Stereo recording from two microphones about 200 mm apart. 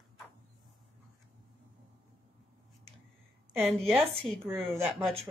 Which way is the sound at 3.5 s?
Centre (ahead or behind).